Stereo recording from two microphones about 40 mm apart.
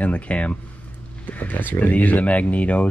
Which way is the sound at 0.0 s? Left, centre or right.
Left.